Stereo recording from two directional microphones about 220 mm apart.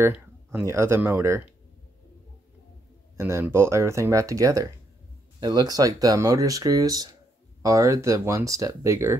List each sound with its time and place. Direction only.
0.0 s speech: 10° right (ahead or behind)
3.2 s speech: 10° right (ahead or behind)